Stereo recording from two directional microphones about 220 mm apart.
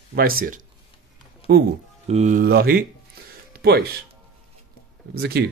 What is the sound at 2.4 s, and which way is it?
Speech, 45° right (ahead or behind).